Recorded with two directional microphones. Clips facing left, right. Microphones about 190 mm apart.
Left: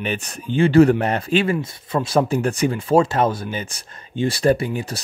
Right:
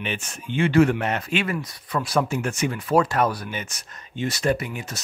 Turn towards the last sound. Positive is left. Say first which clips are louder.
# left 6 dB
turn(degrees=35)  # may be behind; listen again after turning